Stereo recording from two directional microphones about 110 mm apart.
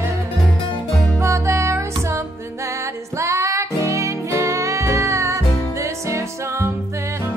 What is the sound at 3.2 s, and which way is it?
Music, 25° right (ahead or behind).